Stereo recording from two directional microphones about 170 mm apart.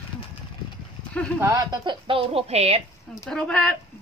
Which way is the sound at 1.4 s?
20° right (ahead or behind).